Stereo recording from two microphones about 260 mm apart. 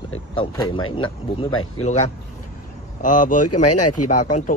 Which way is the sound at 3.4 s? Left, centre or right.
Left.